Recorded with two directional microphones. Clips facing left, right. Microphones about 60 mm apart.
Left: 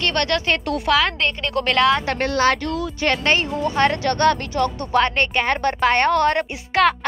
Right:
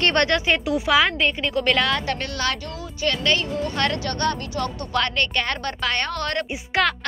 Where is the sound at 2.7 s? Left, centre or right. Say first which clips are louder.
Left 9 dB; left.